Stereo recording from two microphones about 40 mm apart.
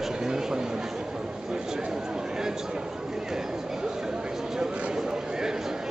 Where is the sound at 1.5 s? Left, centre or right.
Centre.